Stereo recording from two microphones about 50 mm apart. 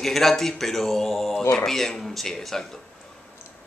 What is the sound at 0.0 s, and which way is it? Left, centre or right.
Speech, centre.